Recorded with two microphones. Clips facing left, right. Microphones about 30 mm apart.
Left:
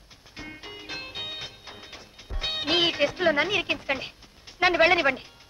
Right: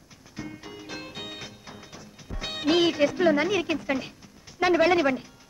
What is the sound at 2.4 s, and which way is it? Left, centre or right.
Speech, left.